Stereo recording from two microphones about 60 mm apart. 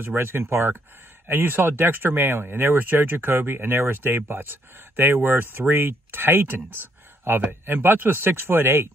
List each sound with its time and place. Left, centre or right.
0.0 s speech: right